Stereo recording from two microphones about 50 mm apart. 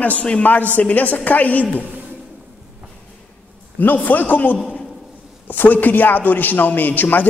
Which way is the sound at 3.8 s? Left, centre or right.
Left.